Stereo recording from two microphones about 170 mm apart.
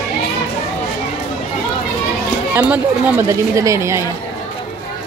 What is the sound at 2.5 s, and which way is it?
Speech, 10° right (ahead or behind).